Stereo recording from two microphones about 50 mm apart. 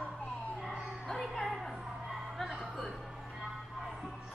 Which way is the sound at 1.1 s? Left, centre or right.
Centre.